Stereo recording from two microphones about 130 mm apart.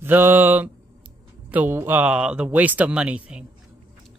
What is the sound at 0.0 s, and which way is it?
Speech, 15° right (ahead or behind).